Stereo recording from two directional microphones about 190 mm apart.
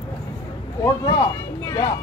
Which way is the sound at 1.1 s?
20° left (ahead or behind).